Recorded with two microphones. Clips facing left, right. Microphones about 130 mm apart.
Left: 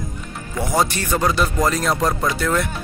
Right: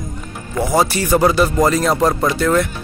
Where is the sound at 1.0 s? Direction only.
10° right (ahead or behind).